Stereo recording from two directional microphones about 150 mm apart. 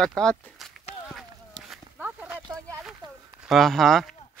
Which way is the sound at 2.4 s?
25° right (ahead or behind).